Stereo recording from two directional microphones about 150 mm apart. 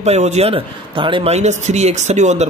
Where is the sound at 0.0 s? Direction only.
45° right (ahead or behind).